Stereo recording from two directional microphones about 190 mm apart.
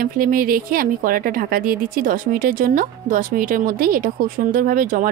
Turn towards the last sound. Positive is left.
turn(degrees=-45)  # may be behind; listen again after turning